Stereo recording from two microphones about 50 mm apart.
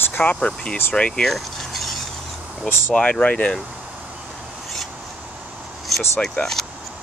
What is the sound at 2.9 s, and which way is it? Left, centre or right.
Speech, left.